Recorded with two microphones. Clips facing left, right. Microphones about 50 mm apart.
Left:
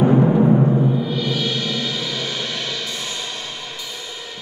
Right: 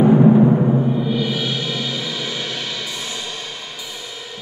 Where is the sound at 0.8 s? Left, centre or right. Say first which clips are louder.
Right 1 dB; centre.